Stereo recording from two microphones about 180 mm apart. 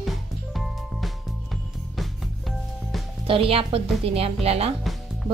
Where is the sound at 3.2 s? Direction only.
30° right (ahead or behind).